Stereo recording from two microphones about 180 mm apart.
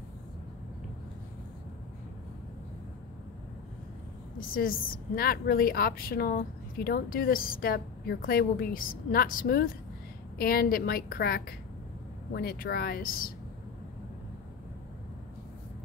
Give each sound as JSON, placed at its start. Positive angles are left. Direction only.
{"t": 4.6, "sound": "a woman's voice", "side_deg": 55}